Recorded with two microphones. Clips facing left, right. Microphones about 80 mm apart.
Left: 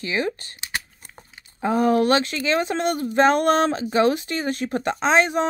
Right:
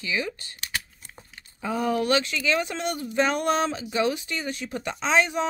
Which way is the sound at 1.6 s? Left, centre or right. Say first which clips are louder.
Left 7 dB; left.